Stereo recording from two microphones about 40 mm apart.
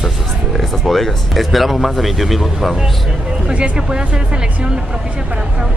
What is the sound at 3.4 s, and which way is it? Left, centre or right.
Speech, right.